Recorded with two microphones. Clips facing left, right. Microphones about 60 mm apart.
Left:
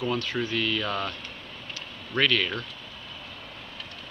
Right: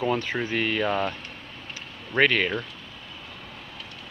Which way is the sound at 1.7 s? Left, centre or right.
Right.